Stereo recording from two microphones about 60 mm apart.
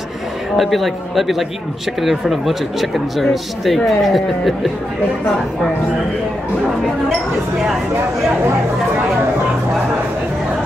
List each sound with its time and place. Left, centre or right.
0.6 s speech: centre